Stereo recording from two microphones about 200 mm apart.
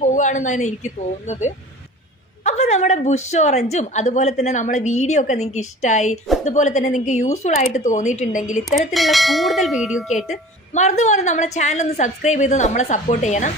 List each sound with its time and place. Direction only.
0.0 s a woman's voice: 40° left (ahead or behind)
8.6 s bell: centre (ahead or behind)
10.7 s a woman's voice: 35° left (ahead or behind)